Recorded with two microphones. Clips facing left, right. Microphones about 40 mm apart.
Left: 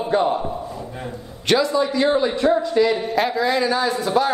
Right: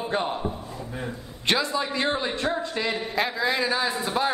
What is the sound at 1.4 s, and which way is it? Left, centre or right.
Speech, right.